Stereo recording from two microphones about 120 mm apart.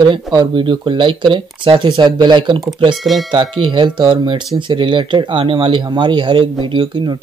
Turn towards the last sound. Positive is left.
turn(degrees=-40)  # may be behind; listen again after turning